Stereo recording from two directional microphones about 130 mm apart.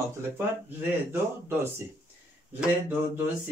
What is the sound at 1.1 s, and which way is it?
Speech, 20° right (ahead or behind).